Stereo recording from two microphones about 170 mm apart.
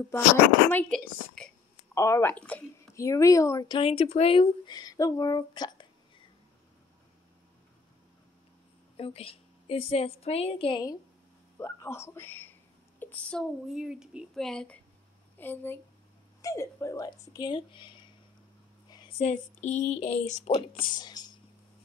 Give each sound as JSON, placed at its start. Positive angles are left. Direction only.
{"t": 0.7, "sound": "a woman's voice", "side_deg": 10}
{"t": 8.9, "sound": "a woman's voice", "side_deg": 35}
{"t": 11.5, "sound": "a man's voice", "side_deg": 15}
{"t": 20.5, "sound": "speech", "side_deg": 30}